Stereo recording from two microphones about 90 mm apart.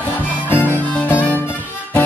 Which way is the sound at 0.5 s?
20° left (ahead or behind).